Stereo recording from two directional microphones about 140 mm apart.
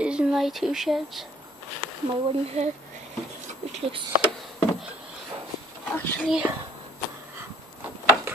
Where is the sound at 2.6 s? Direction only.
50° right (ahead or behind).